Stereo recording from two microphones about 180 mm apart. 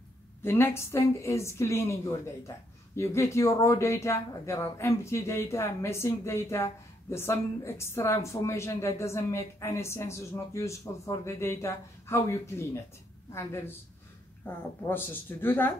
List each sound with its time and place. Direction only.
0.4 s speech: 10° left (ahead or behind)